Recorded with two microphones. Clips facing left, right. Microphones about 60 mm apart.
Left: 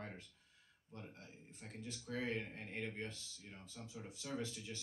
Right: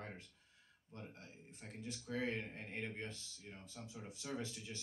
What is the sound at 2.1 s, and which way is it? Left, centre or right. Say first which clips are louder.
Speech: right 1 dB; right.